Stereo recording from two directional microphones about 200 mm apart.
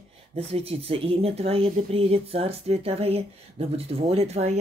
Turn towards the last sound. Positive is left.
turn(degrees=-30)  # may be behind; listen again after turning